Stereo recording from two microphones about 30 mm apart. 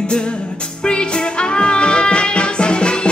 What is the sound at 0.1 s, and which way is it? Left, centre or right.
Music, left.